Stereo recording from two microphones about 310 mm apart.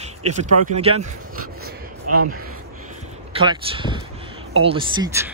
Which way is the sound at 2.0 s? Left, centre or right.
Right.